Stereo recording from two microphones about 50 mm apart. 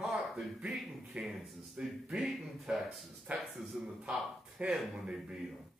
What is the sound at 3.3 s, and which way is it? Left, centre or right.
Speech, right.